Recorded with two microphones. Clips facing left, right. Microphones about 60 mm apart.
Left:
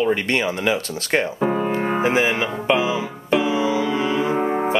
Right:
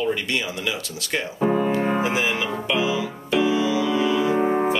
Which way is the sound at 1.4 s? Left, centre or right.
Centre.